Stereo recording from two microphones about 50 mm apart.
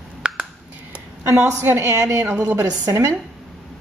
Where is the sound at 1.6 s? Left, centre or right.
Right.